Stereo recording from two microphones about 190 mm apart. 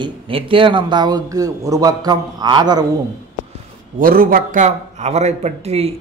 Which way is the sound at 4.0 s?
50° right (ahead or behind).